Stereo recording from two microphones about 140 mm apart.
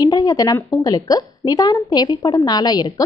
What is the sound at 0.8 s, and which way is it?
Speech, 25° left (ahead or behind).